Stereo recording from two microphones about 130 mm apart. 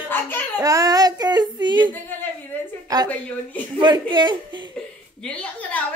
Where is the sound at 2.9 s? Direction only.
30° right (ahead or behind).